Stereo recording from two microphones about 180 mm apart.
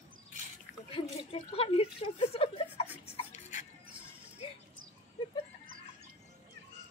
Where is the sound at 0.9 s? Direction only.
30° left (ahead or behind).